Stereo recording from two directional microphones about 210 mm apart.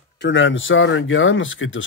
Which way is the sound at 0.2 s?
60° left (ahead or behind).